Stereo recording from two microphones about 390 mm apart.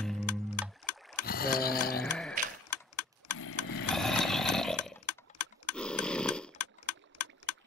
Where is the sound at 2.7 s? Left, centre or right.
Left.